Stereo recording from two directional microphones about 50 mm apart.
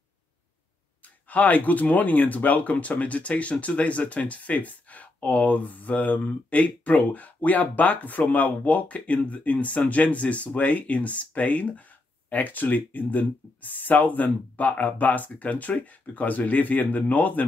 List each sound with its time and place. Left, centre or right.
1.3 s speech: left